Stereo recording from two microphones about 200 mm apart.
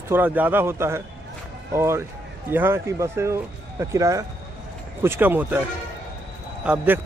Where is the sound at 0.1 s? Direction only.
10° right (ahead or behind).